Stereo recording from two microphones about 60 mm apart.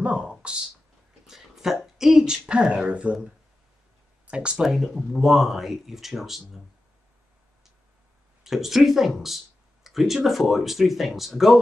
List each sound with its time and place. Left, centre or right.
0.0 s a sound: centre
2.0 s speech: centre
4.3 s speech: centre
4.6 s speech: centre
8.5 s speech: centre